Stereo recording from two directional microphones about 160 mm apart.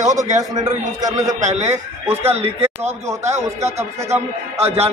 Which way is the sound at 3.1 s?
20° right (ahead or behind).